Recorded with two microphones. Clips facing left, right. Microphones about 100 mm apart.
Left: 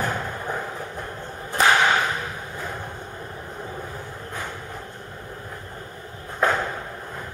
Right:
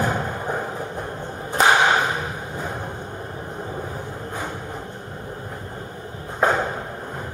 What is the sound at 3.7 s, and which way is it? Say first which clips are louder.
Train: right 4 dB; 25° right (ahead or behind).